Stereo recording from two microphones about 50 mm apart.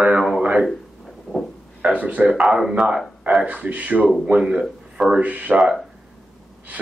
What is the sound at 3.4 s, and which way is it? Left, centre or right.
Speech, right.